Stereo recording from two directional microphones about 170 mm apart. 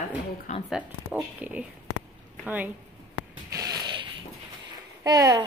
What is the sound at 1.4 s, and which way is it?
A woman's voice, 10° right (ahead or behind).